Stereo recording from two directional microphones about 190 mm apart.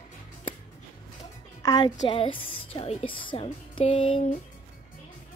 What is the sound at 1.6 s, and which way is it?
A woman's voice, 20° left (ahead or behind).